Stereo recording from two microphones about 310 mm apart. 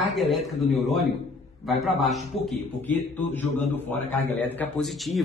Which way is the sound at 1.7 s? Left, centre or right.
Centre.